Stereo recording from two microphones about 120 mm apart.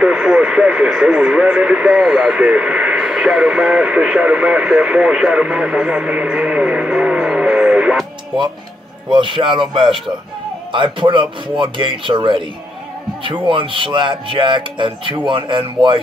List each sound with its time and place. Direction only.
0.0 s speech: 5° right (ahead or behind)
9.1 s speech: 40° right (ahead or behind)